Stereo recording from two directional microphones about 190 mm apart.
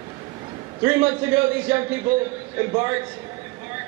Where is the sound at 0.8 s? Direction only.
10° right (ahead or behind).